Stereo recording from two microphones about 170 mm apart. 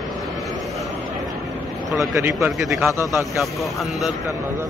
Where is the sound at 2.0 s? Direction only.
15° right (ahead or behind).